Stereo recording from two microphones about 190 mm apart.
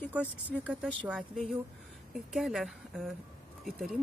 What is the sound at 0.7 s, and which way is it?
Speech, 5° right (ahead or behind).